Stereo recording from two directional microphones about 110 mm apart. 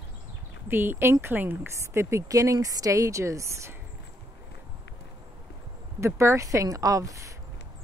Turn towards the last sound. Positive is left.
turn(degrees=-30)  # may be behind; listen again after turning